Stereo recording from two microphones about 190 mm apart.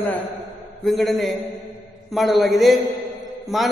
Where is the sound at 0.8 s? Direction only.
Centre (ahead or behind).